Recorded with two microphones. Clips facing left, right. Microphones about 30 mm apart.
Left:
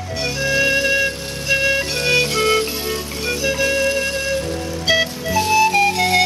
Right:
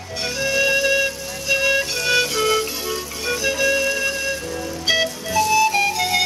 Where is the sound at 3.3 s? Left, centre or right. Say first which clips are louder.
Left 1 dB; centre.